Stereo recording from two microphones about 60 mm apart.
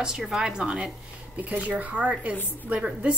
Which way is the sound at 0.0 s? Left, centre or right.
Centre.